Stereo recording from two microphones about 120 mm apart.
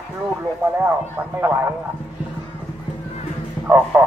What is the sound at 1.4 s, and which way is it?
Speech, 15° right (ahead or behind).